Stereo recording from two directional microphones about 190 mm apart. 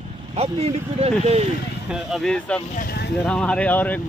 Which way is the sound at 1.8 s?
Centre (ahead or behind).